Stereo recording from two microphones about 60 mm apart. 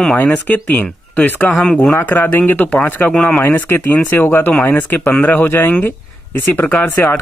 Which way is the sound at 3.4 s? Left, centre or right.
Left.